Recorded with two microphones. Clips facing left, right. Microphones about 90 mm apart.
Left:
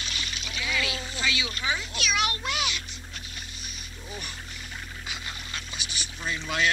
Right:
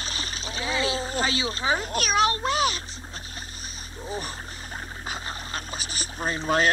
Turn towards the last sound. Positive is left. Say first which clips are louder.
# right 6 dB
turn(degrees=-40)  # may be behind; listen again after turning